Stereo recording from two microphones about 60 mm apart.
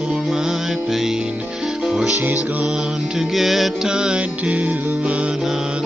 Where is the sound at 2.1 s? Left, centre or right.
Right.